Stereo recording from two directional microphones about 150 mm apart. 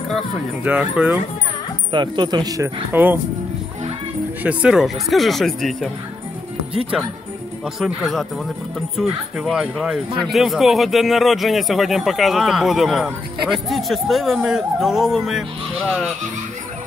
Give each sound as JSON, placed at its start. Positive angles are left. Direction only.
{"t": 0.7, "sound": "speech", "side_deg": -10}
{"t": 1.9, "sound": "speech", "side_deg": -30}
{"t": 4.4, "sound": "speech", "side_deg": -10}
{"t": 7.8, "sound": "speech", "side_deg": 0}
{"t": 9.4, "sound": "speech", "side_deg": 0}